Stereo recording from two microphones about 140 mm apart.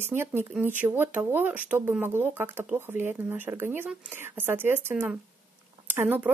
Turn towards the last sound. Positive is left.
turn(degrees=-10)  # may be behind; listen again after turning